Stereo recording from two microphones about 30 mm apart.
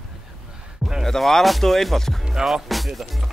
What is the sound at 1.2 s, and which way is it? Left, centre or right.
Skateboard, centre.